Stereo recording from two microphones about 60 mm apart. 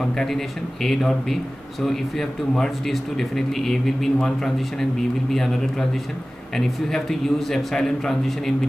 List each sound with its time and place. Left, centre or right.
0.0 s a man's voice: centre